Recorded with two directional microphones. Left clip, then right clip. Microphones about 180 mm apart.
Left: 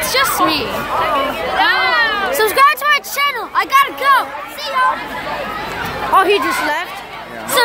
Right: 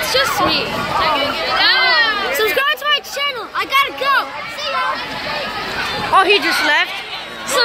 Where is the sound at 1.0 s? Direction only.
30° left (ahead or behind).